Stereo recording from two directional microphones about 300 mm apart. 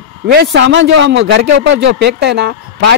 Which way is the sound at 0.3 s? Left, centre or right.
Right.